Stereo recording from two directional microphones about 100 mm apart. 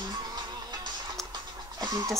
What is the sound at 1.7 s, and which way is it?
Music, 40° right (ahead or behind).